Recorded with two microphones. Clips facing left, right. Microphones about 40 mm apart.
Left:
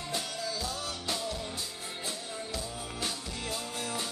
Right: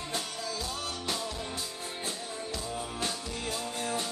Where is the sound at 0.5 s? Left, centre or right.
Right.